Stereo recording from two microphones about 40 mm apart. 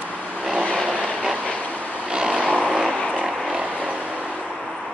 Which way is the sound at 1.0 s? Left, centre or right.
Centre.